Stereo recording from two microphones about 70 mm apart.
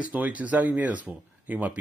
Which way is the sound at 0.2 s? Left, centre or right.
Right.